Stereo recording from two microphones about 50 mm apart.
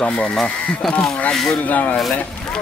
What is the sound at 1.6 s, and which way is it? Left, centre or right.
Speech, left.